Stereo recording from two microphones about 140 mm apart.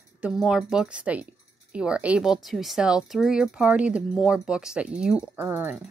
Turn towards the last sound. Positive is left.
turn(degrees=-15)  # may be behind; listen again after turning